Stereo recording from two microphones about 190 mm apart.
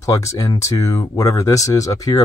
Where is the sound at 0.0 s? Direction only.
15° left (ahead or behind).